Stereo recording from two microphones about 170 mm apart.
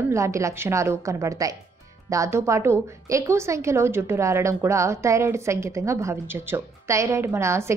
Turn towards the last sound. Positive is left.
turn(degrees=-15)  # may be behind; listen again after turning